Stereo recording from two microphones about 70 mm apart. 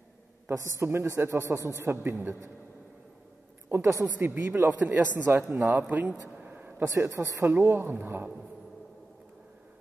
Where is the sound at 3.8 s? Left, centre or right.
Right.